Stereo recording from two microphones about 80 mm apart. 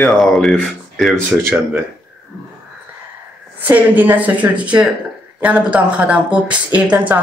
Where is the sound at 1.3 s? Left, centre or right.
Right.